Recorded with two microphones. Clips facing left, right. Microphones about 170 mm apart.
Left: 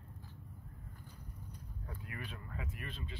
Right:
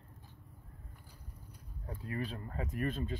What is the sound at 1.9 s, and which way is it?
Speech, 35° right (ahead or behind).